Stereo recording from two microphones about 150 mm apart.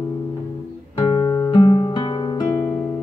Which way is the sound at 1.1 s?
30° left (ahead or behind).